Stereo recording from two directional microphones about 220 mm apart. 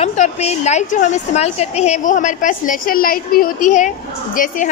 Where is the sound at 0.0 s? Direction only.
30° left (ahead or behind).